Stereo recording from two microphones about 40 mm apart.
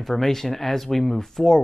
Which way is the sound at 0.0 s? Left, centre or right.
Centre.